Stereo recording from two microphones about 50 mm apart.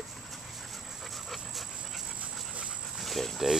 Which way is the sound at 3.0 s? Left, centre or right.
Centre.